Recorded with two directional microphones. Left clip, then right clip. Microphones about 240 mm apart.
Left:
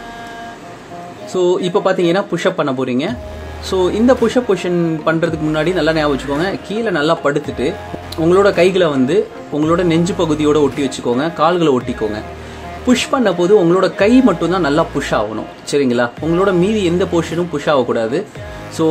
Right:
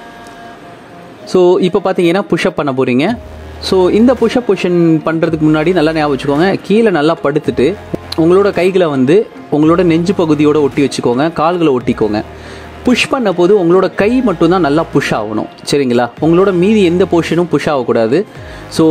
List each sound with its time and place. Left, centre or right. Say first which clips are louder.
1.3 s speech: right 5 dB; right